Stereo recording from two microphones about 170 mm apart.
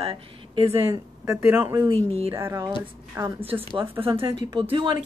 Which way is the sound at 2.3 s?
15° right (ahead or behind).